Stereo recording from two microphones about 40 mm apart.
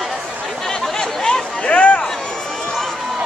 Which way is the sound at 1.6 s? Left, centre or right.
Left.